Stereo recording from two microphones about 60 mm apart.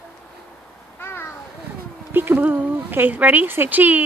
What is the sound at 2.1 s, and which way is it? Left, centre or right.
Speech, right.